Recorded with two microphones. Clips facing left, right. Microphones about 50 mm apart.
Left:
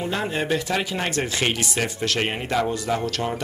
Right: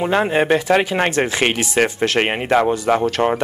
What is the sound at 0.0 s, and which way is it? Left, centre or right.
Speech, right.